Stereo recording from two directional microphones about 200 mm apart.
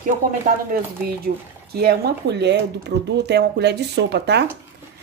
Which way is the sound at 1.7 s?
50° right (ahead or behind).